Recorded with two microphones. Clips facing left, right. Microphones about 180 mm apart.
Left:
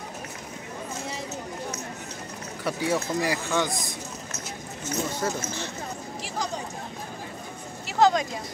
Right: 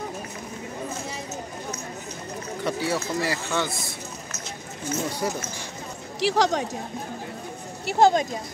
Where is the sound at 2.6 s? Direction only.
15° left (ahead or behind).